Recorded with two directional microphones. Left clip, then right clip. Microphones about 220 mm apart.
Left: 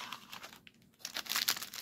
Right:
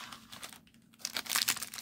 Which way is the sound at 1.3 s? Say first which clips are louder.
Right 1 dB; 15° right (ahead or behind).